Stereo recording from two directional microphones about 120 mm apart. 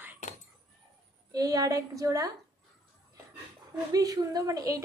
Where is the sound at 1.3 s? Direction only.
30° right (ahead or behind).